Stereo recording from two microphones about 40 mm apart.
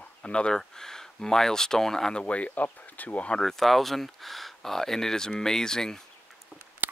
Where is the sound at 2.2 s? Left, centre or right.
Left.